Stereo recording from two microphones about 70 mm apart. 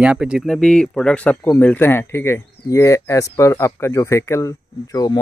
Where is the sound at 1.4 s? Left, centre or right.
Left.